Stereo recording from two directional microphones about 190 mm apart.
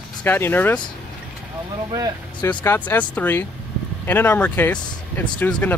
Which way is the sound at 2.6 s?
10° left (ahead or behind).